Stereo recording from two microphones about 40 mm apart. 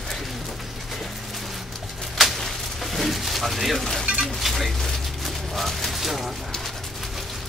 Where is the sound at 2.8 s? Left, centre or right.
Centre.